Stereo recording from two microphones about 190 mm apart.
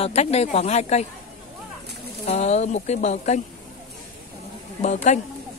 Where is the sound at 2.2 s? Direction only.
35° left (ahead or behind).